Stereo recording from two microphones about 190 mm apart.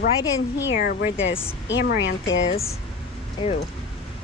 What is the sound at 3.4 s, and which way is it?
Speech, 30° left (ahead or behind).